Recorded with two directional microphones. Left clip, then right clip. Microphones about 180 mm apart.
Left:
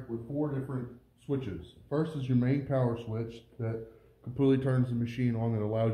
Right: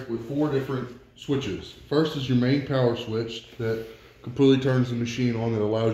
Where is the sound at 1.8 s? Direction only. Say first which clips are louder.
Right 9 dB; 35° left (ahead or behind).